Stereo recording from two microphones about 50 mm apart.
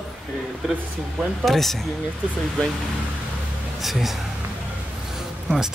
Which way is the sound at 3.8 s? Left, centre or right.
Centre.